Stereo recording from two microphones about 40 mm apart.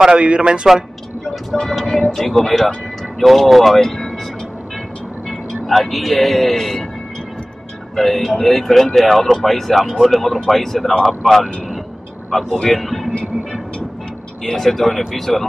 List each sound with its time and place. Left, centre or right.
0.0 s speech: right
1.5 s speech: centre
5.7 s speech: centre
7.9 s speech: centre